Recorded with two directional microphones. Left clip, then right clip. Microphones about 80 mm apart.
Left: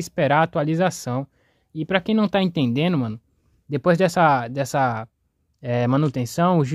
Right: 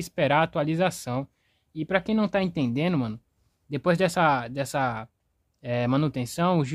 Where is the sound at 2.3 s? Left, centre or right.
Left.